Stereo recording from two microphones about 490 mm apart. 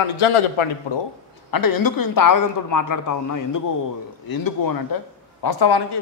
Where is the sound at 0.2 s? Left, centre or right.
Left.